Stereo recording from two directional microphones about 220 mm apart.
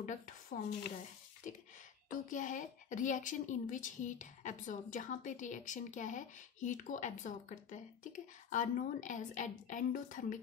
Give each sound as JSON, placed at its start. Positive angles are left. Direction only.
{"t": 0.0, "sound": "speech", "side_deg": 35}
{"t": 1.5, "sound": "a sound", "side_deg": 35}
{"t": 2.0, "sound": "speech", "side_deg": 35}